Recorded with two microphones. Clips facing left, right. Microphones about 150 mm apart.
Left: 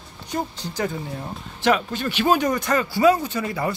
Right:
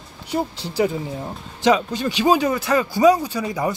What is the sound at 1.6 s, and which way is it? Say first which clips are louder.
Speech: right 3 dB; 15° right (ahead or behind).